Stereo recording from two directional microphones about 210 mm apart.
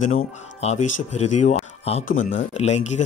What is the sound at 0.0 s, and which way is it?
Speech, 30° left (ahead or behind).